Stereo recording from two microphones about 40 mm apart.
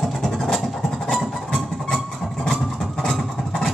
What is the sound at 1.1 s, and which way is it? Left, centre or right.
Music, centre.